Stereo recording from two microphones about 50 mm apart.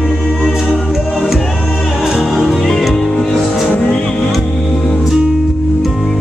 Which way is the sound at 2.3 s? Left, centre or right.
Centre.